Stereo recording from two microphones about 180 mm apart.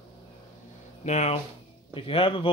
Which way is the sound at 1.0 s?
40° left (ahead or behind).